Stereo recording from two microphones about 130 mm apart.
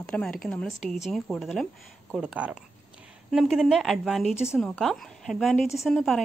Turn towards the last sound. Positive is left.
turn(degrees=0)  # may be behind; listen again after turning